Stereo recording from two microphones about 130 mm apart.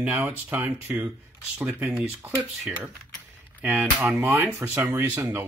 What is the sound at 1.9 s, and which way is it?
Speech, 5° right (ahead or behind).